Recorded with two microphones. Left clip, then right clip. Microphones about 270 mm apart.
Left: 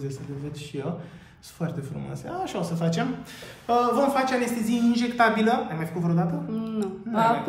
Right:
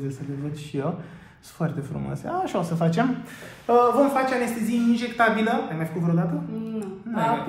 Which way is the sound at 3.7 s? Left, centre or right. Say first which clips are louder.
Right 3 dB; centre.